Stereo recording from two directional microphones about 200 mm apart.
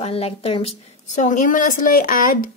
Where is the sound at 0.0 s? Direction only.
30° left (ahead or behind).